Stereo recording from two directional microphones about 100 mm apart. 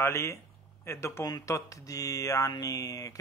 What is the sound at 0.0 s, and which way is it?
Speech, 25° left (ahead or behind).